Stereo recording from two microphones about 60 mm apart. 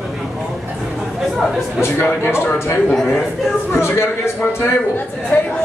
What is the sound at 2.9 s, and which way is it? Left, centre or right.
Speech, centre.